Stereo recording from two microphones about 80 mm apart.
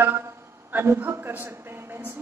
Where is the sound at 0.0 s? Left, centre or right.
Right.